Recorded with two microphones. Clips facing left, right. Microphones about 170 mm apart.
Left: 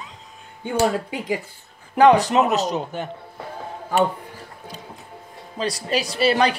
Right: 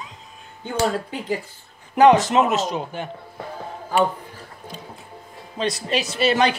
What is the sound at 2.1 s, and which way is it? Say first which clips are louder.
Speech: even; 40° left (ahead or behind).